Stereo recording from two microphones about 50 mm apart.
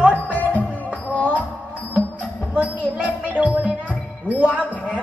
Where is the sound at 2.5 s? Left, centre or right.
Right.